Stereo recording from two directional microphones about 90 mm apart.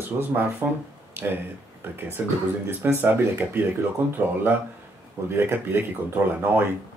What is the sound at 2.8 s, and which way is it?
Speech, 20° right (ahead or behind).